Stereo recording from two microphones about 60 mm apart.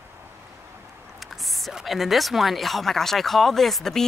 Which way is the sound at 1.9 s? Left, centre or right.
Centre.